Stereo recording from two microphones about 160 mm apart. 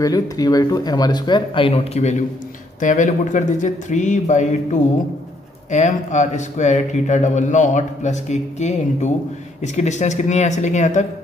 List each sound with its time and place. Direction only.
0.0 s speech: 20° left (ahead or behind); by 4.6 s 50° left (ahead or behind)
5.7 s speech: 50° left (ahead or behind)